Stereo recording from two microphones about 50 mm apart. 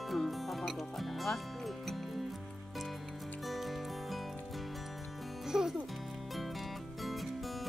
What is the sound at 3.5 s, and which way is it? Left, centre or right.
Music, centre.